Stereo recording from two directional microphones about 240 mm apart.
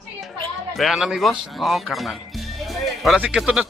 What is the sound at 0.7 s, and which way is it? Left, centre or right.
Speech, centre.